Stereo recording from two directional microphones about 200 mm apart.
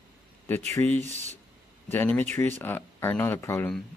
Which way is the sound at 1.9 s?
10° left (ahead or behind).